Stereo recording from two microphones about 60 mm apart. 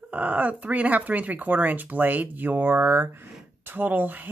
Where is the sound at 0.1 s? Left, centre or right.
Right.